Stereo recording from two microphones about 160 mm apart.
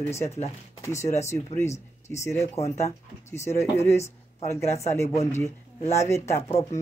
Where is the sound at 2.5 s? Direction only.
40° left (ahead or behind).